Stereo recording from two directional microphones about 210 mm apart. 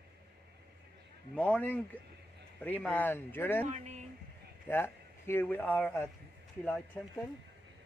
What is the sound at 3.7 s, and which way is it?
Speech, 35° right (ahead or behind).